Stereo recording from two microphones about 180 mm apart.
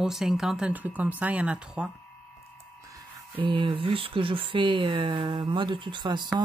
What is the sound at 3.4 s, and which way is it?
Speech, 30° right (ahead or behind).